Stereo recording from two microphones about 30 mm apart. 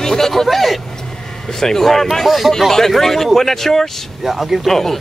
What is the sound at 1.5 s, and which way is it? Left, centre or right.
Speech, centre.